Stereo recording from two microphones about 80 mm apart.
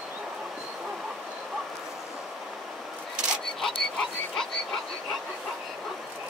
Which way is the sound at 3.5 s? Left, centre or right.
Centre.